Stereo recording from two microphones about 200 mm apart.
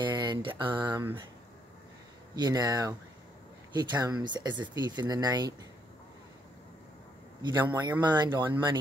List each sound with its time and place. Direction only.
0.0 s mantra: 20° right (ahead or behind)
2.3 s speech: 20° right (ahead or behind)
7.4 s speech: 20° right (ahead or behind)